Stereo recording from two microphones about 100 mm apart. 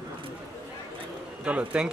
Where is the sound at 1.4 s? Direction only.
15° right (ahead or behind).